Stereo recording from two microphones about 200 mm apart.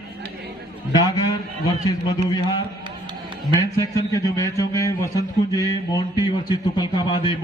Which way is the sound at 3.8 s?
15° left (ahead or behind).